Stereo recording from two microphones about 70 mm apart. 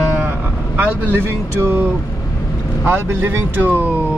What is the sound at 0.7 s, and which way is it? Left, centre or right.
Speech, right.